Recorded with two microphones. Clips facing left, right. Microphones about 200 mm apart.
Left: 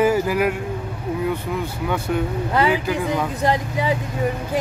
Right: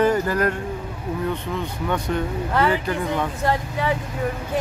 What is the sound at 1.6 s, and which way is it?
Speech, 5° left (ahead or behind).